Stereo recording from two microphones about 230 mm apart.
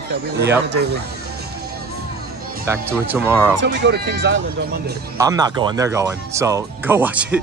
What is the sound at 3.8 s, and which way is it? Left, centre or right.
Speech, right.